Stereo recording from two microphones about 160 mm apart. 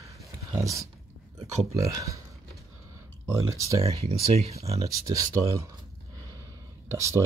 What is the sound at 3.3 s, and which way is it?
Speech, 20° right (ahead or behind).